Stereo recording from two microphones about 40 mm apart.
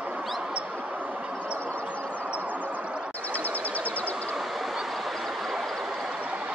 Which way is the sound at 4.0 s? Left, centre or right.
Left.